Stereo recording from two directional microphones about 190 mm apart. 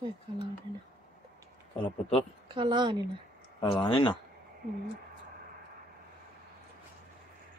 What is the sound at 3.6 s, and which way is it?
Speech, 25° left (ahead or behind).